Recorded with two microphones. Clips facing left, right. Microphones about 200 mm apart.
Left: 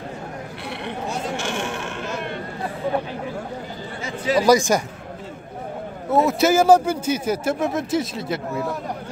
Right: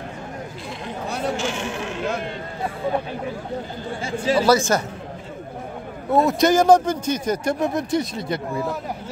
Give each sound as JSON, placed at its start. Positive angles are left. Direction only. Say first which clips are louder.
{"t": 1.4, "sound": "a sound", "louder": "right 1 dB", "side_deg": 60}
{"t": 4.0, "sound": "chatter", "louder": "right 1 dB", "side_deg": -30}
{"t": 4.4, "sound": "speech", "louder": "left 2 dB", "side_deg": 15}
{"t": 6.0, "sound": "speech", "louder": "even", "side_deg": 5}